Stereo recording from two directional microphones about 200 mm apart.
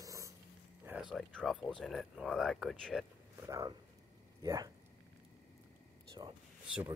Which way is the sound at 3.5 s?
20° right (ahead or behind).